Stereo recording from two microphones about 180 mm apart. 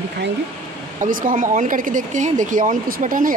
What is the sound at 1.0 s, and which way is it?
Speech, 50° right (ahead or behind).